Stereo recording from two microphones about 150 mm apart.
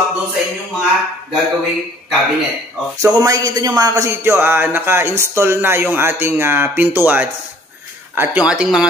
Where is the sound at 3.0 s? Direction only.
25° right (ahead or behind).